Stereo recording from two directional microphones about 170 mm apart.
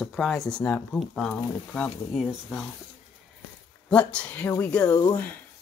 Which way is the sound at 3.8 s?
5° left (ahead or behind).